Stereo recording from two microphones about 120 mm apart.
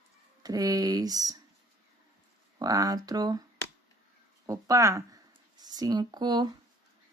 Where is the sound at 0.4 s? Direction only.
30° right (ahead or behind).